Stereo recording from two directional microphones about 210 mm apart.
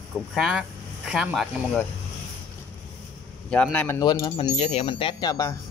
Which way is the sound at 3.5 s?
5° left (ahead or behind).